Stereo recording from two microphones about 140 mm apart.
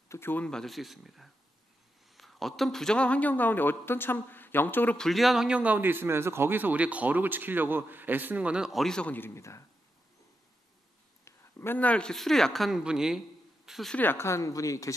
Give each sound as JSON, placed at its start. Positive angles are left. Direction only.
{"t": 0.1, "sound": "speech", "side_deg": 15}
{"t": 11.2, "sound": "speech", "side_deg": 15}
{"t": 13.9, "sound": "speech", "side_deg": 15}